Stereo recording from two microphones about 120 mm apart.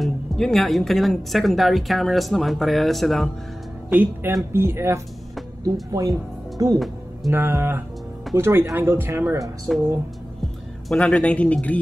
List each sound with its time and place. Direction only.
0.0 s speech: 5° left (ahead or behind)
3.9 s speech: 15° right (ahead or behind)
10.9 s speech: 5° left (ahead or behind)